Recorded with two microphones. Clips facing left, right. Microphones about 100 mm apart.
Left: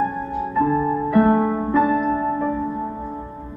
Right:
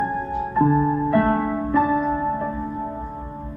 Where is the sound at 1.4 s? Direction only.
25° left (ahead or behind).